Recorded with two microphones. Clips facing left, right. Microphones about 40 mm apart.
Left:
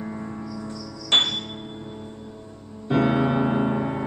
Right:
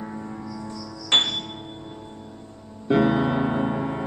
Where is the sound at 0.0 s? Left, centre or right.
Centre.